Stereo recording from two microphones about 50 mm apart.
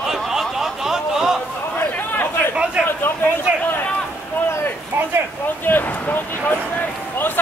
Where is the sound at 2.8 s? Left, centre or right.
Left.